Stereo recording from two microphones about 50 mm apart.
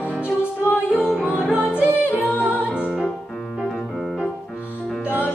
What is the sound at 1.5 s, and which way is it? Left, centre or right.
Music, right.